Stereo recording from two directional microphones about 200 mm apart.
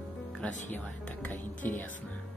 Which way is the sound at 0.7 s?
10° left (ahead or behind).